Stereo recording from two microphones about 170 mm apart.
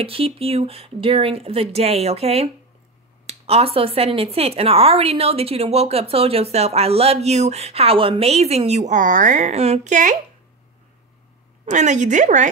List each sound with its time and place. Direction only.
0.0 s a woman's voice: 35° right (ahead or behind)
11.6 s speech: 45° right (ahead or behind)